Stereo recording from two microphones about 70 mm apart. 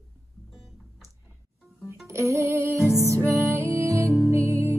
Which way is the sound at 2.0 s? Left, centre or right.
Right.